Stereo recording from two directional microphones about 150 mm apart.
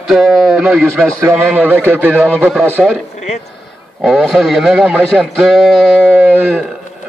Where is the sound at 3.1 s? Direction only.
50° left (ahead or behind).